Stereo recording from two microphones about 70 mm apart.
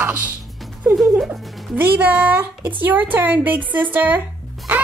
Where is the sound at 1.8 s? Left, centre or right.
Centre.